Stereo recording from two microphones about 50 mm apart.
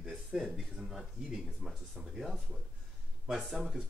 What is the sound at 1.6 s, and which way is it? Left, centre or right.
Speech, centre.